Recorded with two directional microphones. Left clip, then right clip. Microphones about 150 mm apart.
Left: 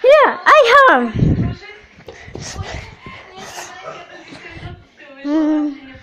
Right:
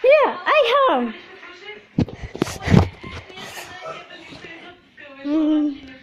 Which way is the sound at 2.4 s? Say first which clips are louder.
Right 7 dB; 50° right (ahead or behind).